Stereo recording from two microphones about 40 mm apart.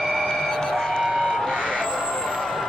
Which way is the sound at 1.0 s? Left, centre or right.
Centre.